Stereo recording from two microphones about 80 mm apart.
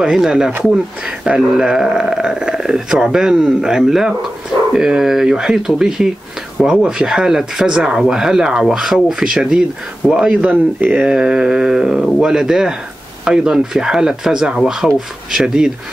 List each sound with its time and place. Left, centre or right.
0.0 s speech: centre